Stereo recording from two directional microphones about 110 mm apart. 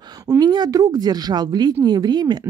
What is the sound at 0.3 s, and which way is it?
Speech, 40° right (ahead or behind).